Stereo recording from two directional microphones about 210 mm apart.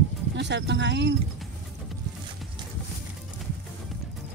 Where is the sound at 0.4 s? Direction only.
55° right (ahead or behind).